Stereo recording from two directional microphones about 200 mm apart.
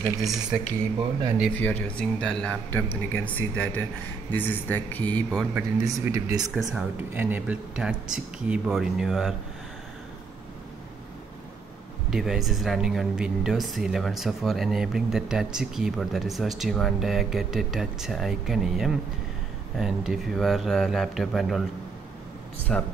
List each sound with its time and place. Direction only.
0.2 s speech: centre (ahead or behind)
5.8 s speech: 15° right (ahead or behind)
12.1 s speech: centre (ahead or behind)
22.7 s speech: 5° left (ahead or behind)